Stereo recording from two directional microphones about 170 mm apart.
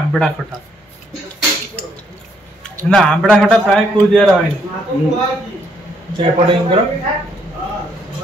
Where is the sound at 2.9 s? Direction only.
5° left (ahead or behind).